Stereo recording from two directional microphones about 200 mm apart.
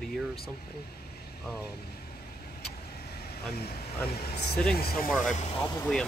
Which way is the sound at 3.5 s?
50° left (ahead or behind).